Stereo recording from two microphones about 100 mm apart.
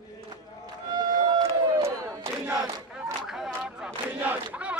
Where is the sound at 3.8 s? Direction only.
15° right (ahead or behind).